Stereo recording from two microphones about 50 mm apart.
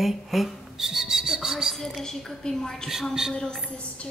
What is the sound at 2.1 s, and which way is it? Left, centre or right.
Speech, centre.